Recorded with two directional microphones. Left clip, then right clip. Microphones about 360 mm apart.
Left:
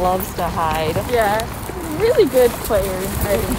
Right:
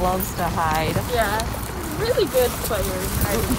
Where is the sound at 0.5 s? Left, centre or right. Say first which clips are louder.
Left 2 dB; centre.